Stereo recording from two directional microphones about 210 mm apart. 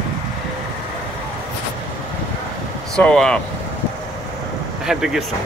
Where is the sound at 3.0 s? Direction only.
5° left (ahead or behind).